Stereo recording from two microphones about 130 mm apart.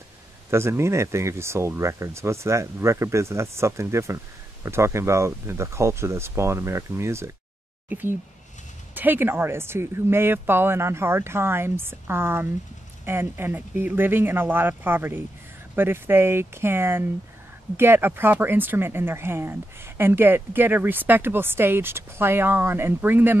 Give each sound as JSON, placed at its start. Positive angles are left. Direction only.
{"t": 0.5, "sound": "speech", "side_deg": -20}